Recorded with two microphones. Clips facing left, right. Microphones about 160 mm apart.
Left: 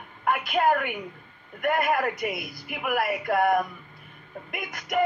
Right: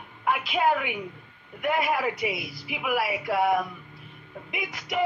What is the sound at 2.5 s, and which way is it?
Speech, 50° left (ahead or behind).